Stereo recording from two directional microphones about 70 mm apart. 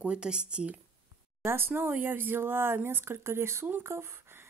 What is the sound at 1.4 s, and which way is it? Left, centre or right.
Speech, right.